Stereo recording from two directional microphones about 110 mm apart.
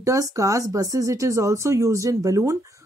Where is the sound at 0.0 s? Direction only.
30° right (ahead or behind).